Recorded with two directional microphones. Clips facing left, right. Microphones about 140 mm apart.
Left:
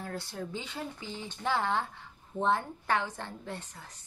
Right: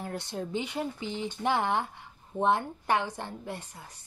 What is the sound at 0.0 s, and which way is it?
Speech, 20° right (ahead or behind).